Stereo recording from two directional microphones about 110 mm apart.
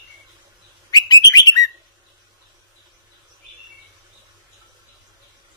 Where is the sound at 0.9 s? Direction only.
40° left (ahead or behind).